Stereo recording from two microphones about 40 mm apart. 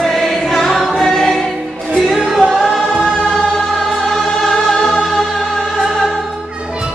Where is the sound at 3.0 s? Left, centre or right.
Centre.